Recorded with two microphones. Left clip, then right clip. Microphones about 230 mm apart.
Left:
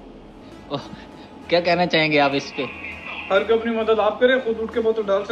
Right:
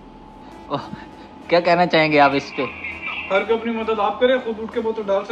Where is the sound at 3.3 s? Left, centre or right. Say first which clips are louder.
Left 1 dB; centre.